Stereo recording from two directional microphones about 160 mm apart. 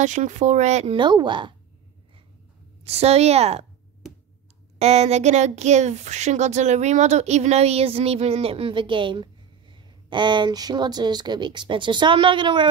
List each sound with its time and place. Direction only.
0.0 s speech: 50° right (ahead or behind)
0.9 s a woman's voice: 30° right (ahead or behind)
2.8 s speech: 40° right (ahead or behind)
4.7 s speech: 40° right (ahead or behind)